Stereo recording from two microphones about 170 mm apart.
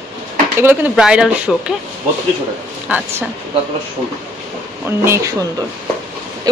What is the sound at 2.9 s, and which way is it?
Speech, 10° right (ahead or behind).